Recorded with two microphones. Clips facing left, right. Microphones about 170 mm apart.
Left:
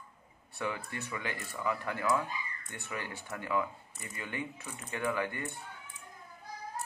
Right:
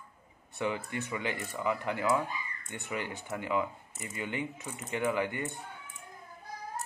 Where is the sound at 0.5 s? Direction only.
20° right (ahead or behind).